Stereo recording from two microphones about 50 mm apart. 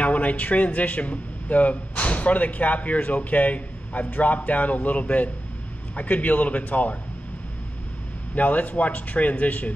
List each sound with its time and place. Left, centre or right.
0.0 s speech: left
8.4 s speech: left